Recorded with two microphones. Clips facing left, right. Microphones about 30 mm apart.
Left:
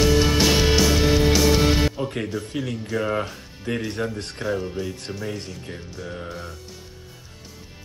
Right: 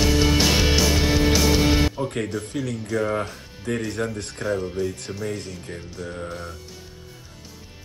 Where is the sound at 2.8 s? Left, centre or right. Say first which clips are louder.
Right 1 dB; left.